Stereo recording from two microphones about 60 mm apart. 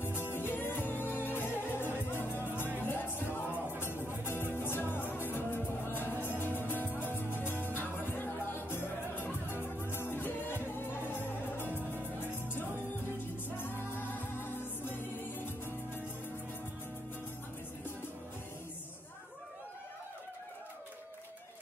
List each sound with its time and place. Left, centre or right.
0.3 s music: left
11.6 s music: right
11.9 s music: left